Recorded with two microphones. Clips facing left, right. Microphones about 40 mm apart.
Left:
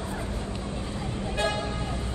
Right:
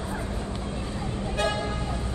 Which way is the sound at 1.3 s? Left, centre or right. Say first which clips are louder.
Right 1 dB; left.